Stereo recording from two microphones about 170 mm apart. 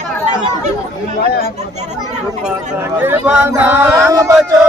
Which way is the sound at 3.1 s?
10° right (ahead or behind).